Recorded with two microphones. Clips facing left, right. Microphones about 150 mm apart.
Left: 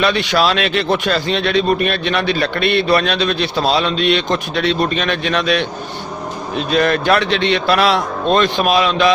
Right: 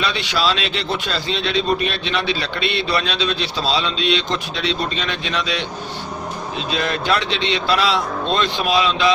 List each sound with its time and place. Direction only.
0.0 s a man's voice: 55° left (ahead or behind)
6.7 s a man's voice: 55° left (ahead or behind)